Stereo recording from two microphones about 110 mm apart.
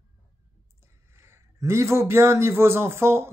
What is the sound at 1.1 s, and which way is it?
Speech, 25° right (ahead or behind).